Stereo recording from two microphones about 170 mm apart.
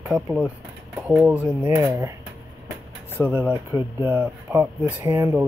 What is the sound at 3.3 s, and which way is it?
Speech, 10° right (ahead or behind).